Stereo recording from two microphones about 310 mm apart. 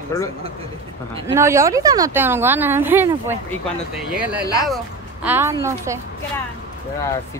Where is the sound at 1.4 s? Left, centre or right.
Centre.